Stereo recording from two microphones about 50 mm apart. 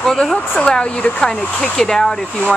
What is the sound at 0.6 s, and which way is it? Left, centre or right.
Speech, left.